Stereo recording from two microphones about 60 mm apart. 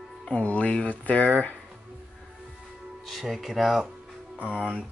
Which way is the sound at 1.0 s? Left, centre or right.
Left.